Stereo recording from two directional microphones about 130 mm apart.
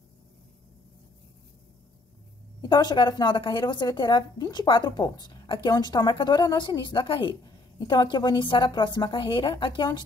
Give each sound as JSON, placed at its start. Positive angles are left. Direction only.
{"t": 2.6, "sound": "a woman's voice", "side_deg": 30}